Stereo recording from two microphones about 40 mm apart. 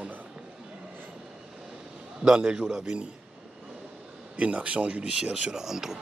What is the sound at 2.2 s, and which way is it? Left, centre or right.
Speech, centre.